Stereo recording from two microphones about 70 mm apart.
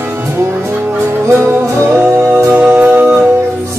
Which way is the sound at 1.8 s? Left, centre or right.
Right.